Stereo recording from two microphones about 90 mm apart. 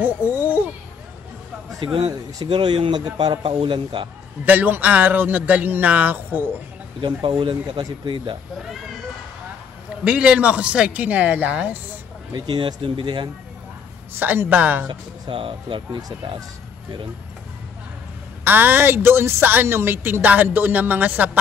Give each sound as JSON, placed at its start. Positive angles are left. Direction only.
{"t": 0.0, "sound": "a sound", "side_deg": -20}
{"t": 2.3, "sound": "speech", "side_deg": -55}
{"t": 4.5, "sound": "a woman's voice", "side_deg": -20}
{"t": 7.0, "sound": "speech", "side_deg": -55}
{"t": 10.0, "sound": "speech", "side_deg": -10}
{"t": 12.4, "sound": "speech", "side_deg": -55}
{"t": 14.1, "sound": "a woman's voice", "side_deg": -25}
{"t": 14.9, "sound": "speech", "side_deg": -70}
{"t": 18.4, "sound": "a woman's voice", "side_deg": -20}